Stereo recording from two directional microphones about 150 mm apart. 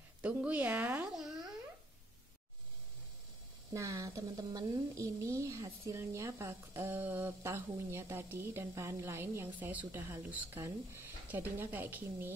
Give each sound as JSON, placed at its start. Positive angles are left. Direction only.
{"t": 0.2, "sound": "a woman's voice", "side_deg": -10}
{"t": 3.7, "sound": "speech", "side_deg": -20}